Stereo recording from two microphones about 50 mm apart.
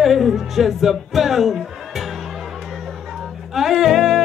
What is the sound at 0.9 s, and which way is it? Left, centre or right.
Music, centre.